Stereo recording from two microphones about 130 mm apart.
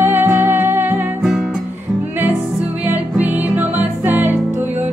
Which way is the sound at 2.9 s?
10° right (ahead or behind).